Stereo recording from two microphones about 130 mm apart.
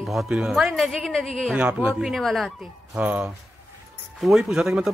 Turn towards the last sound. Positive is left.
turn(degrees=-5)  # may be behind; listen again after turning